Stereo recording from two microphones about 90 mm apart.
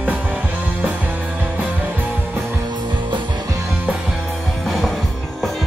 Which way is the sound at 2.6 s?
60° right (ahead or behind).